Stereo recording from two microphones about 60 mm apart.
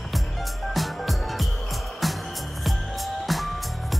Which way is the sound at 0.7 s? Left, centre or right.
Centre.